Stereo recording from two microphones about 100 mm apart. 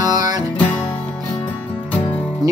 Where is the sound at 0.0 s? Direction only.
40° right (ahead or behind).